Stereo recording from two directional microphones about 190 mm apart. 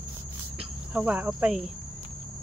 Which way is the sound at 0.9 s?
5° right (ahead or behind).